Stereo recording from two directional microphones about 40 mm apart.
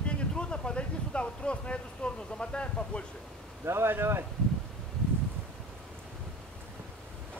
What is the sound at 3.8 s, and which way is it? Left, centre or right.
Speech, right.